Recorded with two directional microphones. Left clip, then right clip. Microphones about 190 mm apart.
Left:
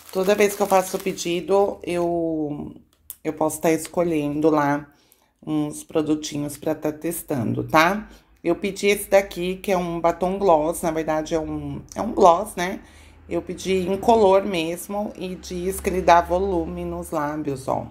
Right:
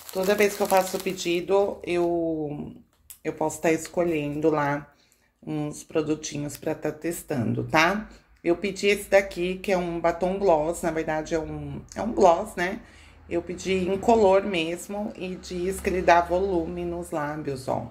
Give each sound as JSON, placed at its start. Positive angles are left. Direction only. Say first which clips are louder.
{"t": 0.1, "sound": "speech", "louder": "left 3 dB", "side_deg": 35}
{"t": 3.3, "sound": "a woman's voice", "louder": "left 3 dB", "side_deg": 25}